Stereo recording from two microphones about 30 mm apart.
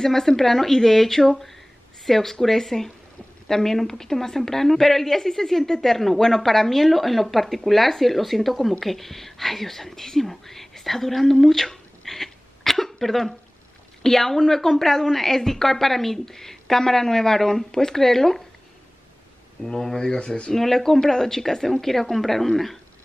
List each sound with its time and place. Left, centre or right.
0.0 s a woman's voice: centre
19.6 s a woman's voice: centre
20.1 s speech: left
20.5 s a woman's voice: centre